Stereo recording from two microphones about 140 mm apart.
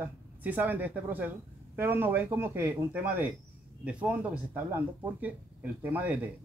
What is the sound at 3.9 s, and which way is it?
Speech, 10° right (ahead or behind).